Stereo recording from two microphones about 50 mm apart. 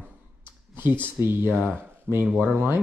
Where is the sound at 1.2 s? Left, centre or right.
Right.